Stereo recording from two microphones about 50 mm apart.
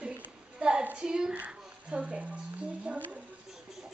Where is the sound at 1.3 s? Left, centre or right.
Right.